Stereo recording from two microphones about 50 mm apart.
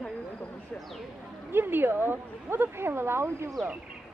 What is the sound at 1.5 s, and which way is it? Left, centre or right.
Speech, right.